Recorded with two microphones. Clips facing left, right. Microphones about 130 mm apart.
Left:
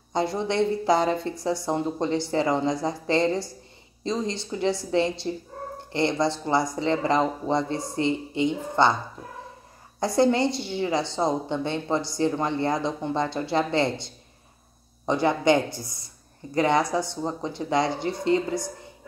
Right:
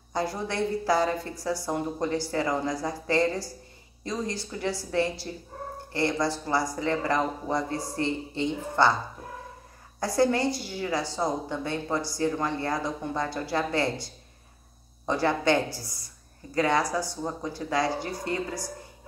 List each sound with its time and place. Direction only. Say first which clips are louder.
0.1 s a woman's voice: left 4 dB; 25° left (ahead or behind)
9.9 s a woman's voice: left 3 dB; 20° left (ahead or behind)